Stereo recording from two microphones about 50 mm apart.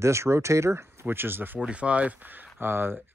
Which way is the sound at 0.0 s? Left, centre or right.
Right.